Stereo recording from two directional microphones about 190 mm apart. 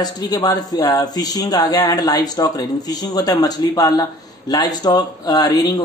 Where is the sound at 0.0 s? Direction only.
20° left (ahead or behind).